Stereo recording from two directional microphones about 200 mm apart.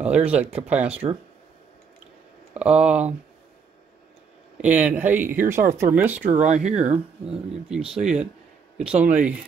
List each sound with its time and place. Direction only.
0.0 s speech: 5° right (ahead or behind)
2.5 s speech: 5° right (ahead or behind)
4.6 s speech: 5° right (ahead or behind)
7.9 s speech: 5° right (ahead or behind)